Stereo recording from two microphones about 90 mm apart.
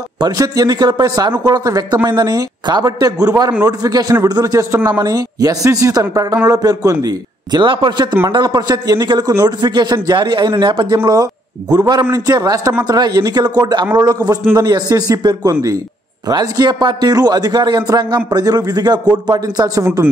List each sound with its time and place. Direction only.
0.4 s a man's voice: 45° right (ahead or behind)
7.6 s a man's voice: 65° right (ahead or behind)
8.3 s a man's voice: 55° right (ahead or behind)
11.7 s a man's voice: 50° right (ahead or behind)